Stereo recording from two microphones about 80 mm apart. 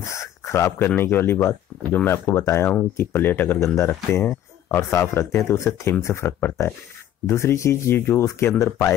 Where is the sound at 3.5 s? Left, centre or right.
Left.